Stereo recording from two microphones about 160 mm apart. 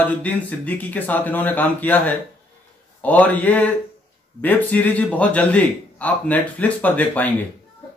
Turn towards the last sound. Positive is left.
turn(degrees=10)  # may be behind; listen again after turning